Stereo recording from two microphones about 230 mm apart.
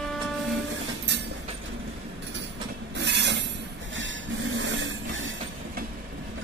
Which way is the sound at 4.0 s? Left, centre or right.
Right.